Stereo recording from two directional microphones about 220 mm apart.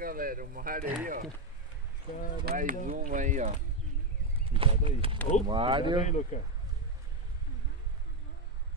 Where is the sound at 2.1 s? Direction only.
35° left (ahead or behind).